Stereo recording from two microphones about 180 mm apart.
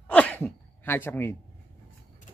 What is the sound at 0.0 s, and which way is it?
Sneeze, 10° left (ahead or behind).